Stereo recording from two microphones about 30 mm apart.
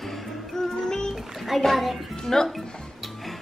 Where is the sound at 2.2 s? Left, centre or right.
Centre.